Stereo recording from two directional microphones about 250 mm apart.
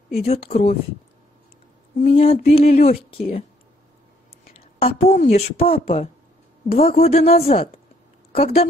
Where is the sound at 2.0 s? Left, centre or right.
Left.